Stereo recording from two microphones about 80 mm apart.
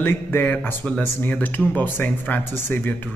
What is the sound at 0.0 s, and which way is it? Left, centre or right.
Speech, left.